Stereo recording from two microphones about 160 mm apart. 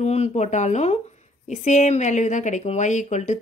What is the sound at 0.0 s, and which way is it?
A woman's voice, 40° left (ahead or behind).